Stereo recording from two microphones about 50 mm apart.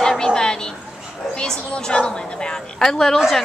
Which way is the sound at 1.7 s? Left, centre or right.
Left.